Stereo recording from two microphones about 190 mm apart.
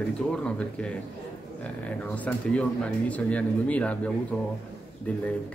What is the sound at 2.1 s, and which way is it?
Speech, 5° left (ahead or behind).